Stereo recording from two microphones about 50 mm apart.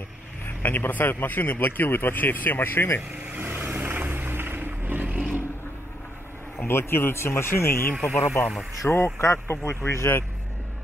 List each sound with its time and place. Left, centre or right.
0.6 s a man's voice: left
3.3 s vehicle: right
5.0 s a sound: right
6.6 s speech: left
9.5 s speech: left